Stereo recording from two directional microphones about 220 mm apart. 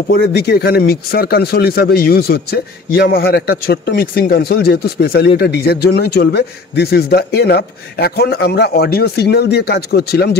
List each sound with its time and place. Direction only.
0.1 s speech: 50° left (ahead or behind)